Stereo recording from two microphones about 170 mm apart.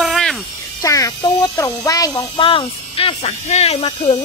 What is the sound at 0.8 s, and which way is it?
Speech, 20° left (ahead or behind).